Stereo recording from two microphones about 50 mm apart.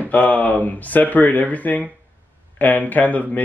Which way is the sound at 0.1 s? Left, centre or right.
Left.